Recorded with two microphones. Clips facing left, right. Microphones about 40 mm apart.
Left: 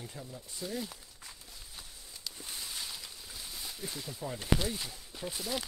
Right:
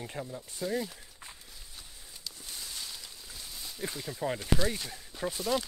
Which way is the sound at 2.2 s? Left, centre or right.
Centre.